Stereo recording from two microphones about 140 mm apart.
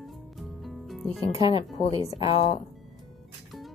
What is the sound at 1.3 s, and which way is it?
A woman's voice, 45° left (ahead or behind).